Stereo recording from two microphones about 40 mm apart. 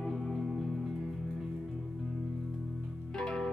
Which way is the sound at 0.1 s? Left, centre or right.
Centre.